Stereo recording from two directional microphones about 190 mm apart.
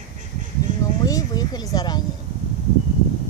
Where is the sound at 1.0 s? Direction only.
20° left (ahead or behind).